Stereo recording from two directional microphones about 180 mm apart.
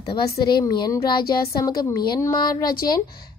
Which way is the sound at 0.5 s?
25° left (ahead or behind).